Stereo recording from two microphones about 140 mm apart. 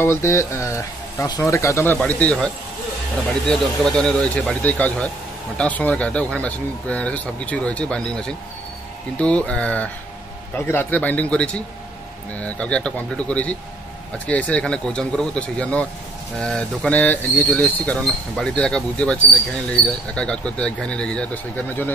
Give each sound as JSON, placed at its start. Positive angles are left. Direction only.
{"t": 0.0, "sound": "speech", "side_deg": 20}